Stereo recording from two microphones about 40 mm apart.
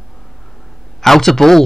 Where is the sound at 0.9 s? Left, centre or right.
Centre.